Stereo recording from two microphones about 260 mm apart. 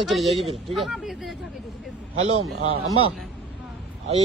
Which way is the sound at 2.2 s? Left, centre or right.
Right.